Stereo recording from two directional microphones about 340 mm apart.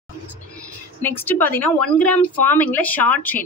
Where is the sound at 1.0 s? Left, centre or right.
Centre.